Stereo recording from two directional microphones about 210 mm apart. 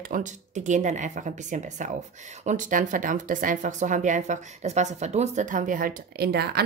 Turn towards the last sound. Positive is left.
turn(degrees=-50)  # may be behind; listen again after turning